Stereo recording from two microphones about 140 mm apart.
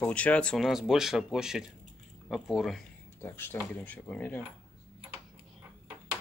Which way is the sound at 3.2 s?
15° left (ahead or behind).